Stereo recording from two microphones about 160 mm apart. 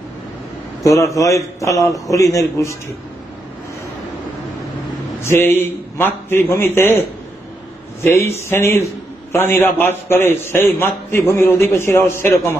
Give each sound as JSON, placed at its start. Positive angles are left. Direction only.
{"t": 0.8, "sound": "a man's voice", "side_deg": 20}
{"t": 5.2, "sound": "a man's voice", "side_deg": 15}